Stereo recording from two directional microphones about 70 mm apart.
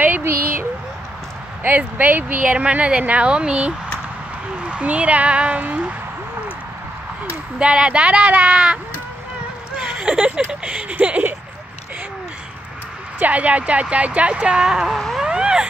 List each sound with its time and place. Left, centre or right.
1.8 s a woman's voice: right
7.2 s speech: centre
9.8 s a sound: centre
13.2 s speech: right
14.9 s a sound: centre
15.2 s cat: centre